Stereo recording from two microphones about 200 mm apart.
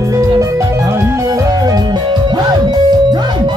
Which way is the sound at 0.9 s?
15° right (ahead or behind).